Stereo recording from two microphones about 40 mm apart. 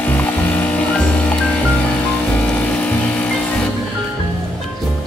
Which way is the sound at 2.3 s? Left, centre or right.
Left.